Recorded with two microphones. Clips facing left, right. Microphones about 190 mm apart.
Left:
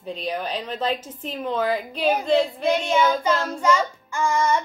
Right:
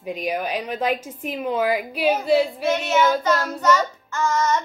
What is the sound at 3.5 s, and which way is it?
A child's voice, 10° left (ahead or behind).